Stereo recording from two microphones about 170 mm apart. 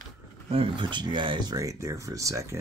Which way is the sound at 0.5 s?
30° right (ahead or behind).